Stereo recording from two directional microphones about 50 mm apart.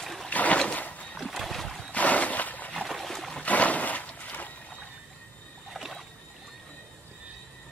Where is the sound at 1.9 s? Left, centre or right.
Left.